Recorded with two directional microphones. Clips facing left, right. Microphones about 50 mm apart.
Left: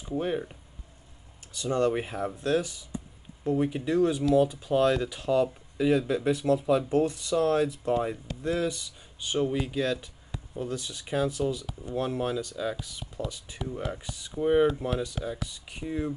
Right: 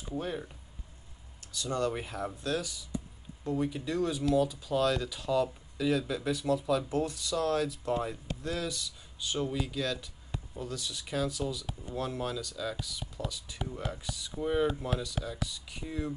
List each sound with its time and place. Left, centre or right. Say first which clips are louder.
0.2 s speech: left 8 dB; left